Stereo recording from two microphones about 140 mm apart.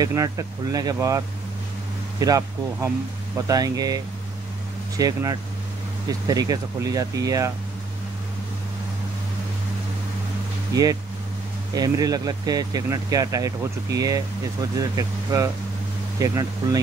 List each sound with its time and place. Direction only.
0.0 s speech: 25° right (ahead or behind)
10.7 s speech: 25° right (ahead or behind)